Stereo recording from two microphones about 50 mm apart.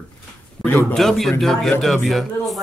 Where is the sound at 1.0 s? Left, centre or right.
Centre.